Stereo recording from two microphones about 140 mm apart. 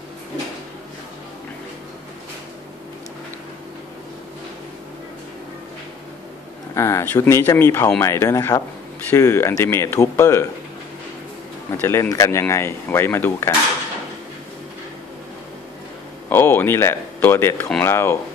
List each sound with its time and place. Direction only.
6.7 s speech: 20° left (ahead or behind)
11.7 s speech: 20° left (ahead or behind)
16.3 s speech: 15° left (ahead or behind)